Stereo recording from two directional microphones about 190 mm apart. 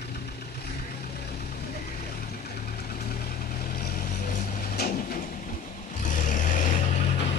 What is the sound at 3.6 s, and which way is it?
Vehicle, 50° left (ahead or behind).